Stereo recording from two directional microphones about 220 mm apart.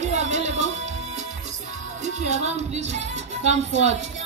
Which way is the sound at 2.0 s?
30° right (ahead or behind).